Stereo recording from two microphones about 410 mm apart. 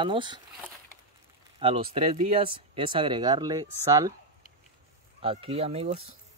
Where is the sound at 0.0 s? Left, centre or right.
Centre.